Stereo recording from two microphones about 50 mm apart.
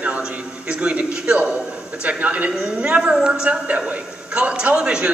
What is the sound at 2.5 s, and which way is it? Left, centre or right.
A man's voice, centre.